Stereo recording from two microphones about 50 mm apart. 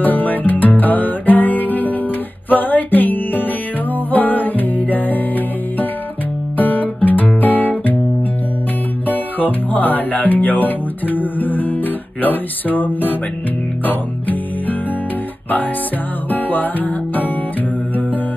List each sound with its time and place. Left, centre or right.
0.0 s music: left
6.6 s guitar: left
9.0 s music: left
16.3 s music: left